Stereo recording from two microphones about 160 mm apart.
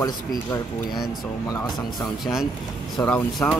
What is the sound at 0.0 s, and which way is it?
Speech, 20° left (ahead or behind).